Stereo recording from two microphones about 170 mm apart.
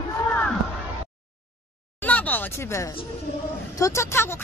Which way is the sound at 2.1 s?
10° left (ahead or behind).